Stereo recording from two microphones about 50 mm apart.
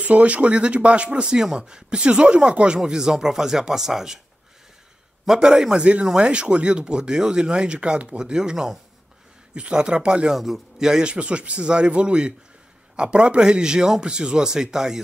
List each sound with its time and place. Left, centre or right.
0.0 s speech: right; by 4.2 s centre
5.2 s speech: centre
10.3 s speech: centre